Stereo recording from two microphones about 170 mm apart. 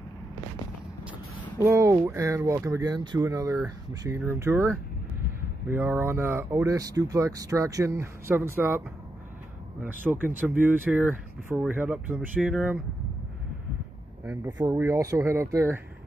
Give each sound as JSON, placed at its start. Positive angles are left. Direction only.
{"t": 1.6, "sound": "speech", "side_deg": -15}
{"t": 14.2, "sound": "speech", "side_deg": -15}